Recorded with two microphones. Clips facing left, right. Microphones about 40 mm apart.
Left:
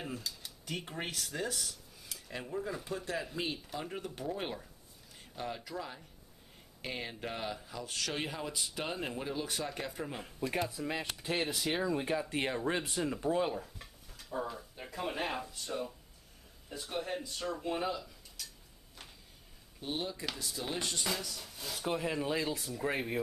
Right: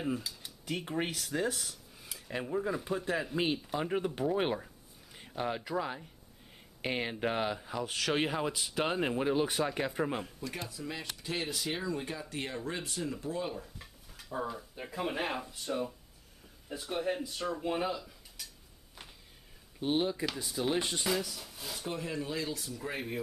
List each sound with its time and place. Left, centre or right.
0.0 s speech: centre; by 7.9 s right
8.5 s speech: centre
8.8 s speech: right
10.4 s speech: left
13.5 s speech: centre
14.1 s speech: centre
19.8 s speech: right; by 21.8 s centre
21.8 s speech: centre
22.2 s speech: left